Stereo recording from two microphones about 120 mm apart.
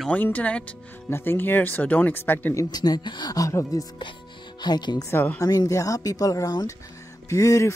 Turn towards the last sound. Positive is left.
turn(degrees=25)  # may be behind; listen again after turning